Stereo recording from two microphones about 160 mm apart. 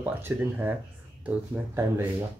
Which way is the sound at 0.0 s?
10° right (ahead or behind).